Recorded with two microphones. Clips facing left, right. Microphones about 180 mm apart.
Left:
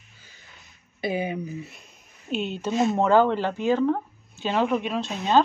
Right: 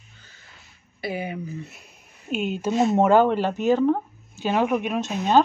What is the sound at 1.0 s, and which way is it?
Speech, 20° left (ahead or behind).